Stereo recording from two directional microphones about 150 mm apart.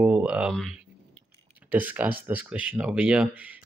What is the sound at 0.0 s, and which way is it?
Speech, 10° right (ahead or behind).